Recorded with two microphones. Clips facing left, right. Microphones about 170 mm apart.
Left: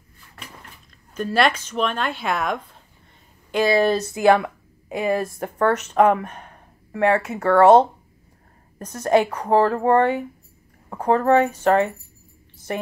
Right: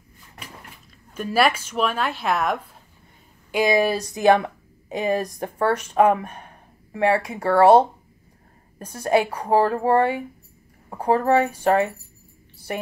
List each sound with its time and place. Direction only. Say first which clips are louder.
1.1 s speech: even; 10° right (ahead or behind)